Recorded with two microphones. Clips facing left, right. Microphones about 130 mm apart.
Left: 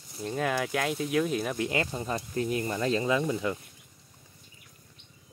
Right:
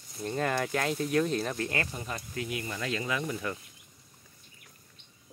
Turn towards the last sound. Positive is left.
turn(degrees=20)  # may be behind; listen again after turning